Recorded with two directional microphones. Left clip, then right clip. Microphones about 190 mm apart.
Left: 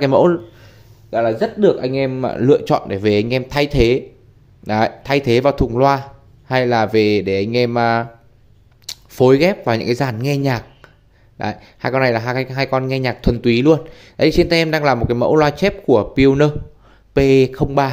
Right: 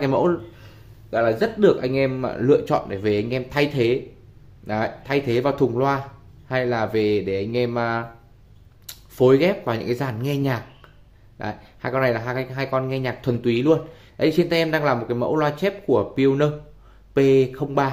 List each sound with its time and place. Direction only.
0.0 s speech: 35° left (ahead or behind)